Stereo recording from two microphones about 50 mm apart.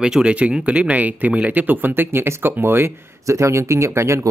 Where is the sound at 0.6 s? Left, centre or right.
Right.